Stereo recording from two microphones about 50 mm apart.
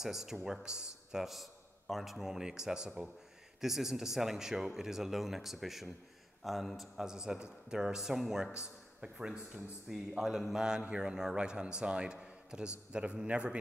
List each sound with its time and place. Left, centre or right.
0.0 s a man's voice: centre
6.8 s a man's voice: centre
8.5 s a man's voice: centre